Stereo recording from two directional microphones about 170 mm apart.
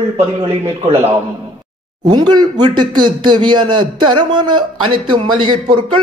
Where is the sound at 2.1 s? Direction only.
25° right (ahead or behind).